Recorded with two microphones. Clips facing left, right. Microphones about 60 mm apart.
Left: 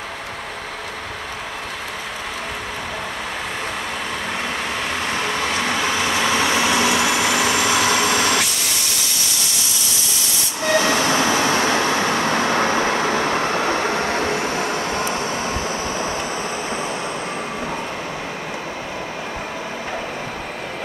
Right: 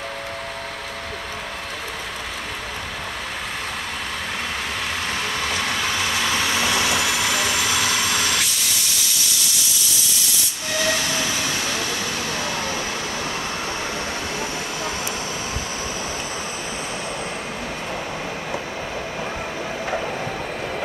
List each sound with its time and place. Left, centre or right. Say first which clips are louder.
5.0 s vehicle: left 3 dB; centre
10.6 s train: left 6 dB; left